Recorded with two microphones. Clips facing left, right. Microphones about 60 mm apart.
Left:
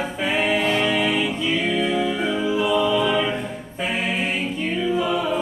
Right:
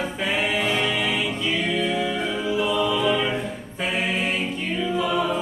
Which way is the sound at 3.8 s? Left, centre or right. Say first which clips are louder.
Left 1 dB; centre.